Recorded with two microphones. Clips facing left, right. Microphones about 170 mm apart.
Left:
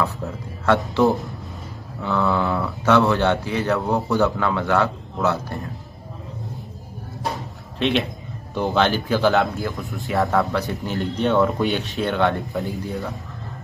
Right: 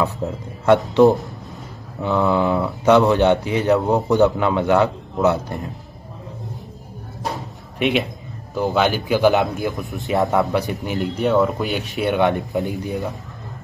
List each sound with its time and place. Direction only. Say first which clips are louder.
0.0 s speech: right 3 dB; 20° right (ahead or behind)
2.0 s speech: right 3 dB; 20° right (ahead or behind)
7.8 s speech: right 1 dB; 5° right (ahead or behind)
11.1 s speech: right 1 dB; 5° right (ahead or behind)
12.0 s speech: right 4 dB; 15° right (ahead or behind)